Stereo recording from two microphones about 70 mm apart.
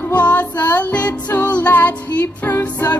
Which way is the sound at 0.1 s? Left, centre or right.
Left.